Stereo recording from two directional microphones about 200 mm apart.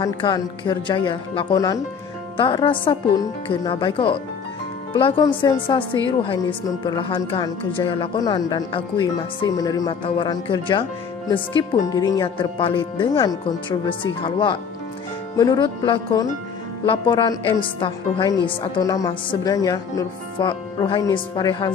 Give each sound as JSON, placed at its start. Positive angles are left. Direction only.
{"t": 0.0, "sound": "a woman's voice", "side_deg": 25}